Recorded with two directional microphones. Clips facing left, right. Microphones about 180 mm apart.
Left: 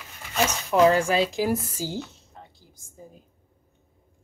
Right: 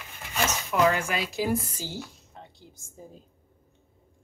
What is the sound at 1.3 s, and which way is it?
Speech, 10° left (ahead or behind).